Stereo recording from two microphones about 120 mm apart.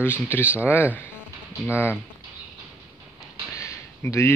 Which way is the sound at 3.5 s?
25° left (ahead or behind).